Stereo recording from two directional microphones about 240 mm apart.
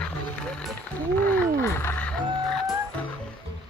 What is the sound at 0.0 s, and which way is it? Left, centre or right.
Music, centre.